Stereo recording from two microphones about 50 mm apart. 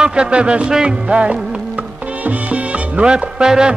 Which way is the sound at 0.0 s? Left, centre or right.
Right.